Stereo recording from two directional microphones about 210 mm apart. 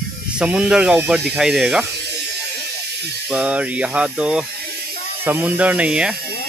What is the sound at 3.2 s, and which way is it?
Speech, 5° right (ahead or behind).